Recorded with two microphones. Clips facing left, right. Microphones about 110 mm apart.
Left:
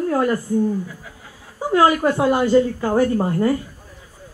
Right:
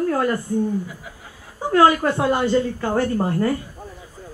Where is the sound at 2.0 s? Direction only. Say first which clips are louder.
Left 2 dB; 15° left (ahead or behind).